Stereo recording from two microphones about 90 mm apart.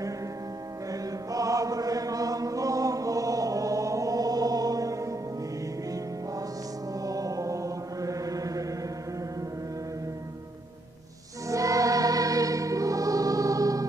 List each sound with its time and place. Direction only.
1.3 s chant: 40° right (ahead or behind)
6.9 s chant: 40° right (ahead or behind)
11.4 s choir: 40° right (ahead or behind)